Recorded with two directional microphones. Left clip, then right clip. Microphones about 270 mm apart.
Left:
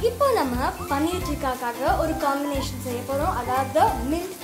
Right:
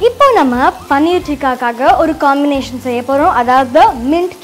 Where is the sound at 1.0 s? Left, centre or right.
Right.